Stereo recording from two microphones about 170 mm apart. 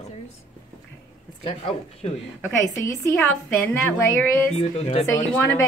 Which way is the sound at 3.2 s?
10° left (ahead or behind).